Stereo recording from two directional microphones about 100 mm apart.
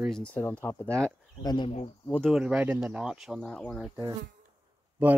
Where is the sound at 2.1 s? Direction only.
10° left (ahead or behind).